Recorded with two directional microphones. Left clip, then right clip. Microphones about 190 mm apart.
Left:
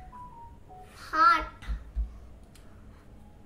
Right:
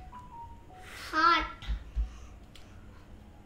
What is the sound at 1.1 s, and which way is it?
Babbling, 15° left (ahead or behind).